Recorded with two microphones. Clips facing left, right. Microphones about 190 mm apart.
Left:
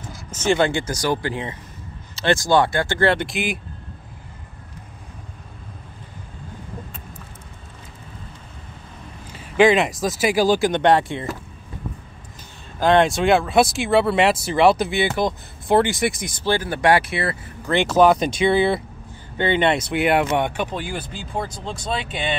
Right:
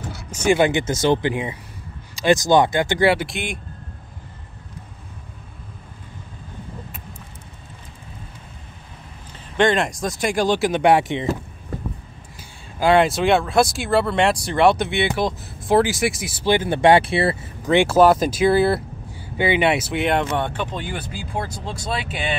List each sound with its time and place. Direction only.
0.3 s speech: 10° right (ahead or behind)
9.3 s speech: 5° left (ahead or behind); by 11.3 s 20° right (ahead or behind)
12.7 s speech: 10° right (ahead or behind)
16.4 s speech: 20° right (ahead or behind)
17.6 s speech: 10° right (ahead or behind)
21.1 s speech: 10° right (ahead or behind)